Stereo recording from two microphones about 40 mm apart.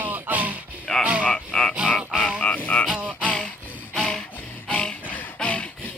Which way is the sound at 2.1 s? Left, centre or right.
Centre.